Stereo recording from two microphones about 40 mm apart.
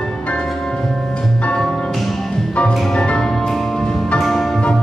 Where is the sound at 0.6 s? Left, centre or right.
Centre.